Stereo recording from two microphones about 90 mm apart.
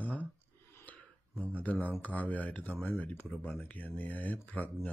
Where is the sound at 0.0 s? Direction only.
20° left (ahead or behind).